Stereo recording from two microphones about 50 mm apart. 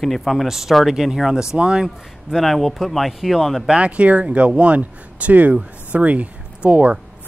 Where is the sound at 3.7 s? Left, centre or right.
Right.